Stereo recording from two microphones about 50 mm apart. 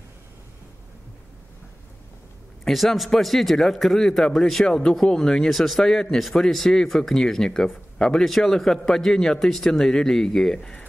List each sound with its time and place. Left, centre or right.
2.6 s a man's voice: centre
4.6 s speech: centre